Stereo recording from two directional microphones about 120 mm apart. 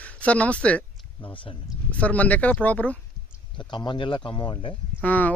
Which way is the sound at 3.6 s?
40° left (ahead or behind).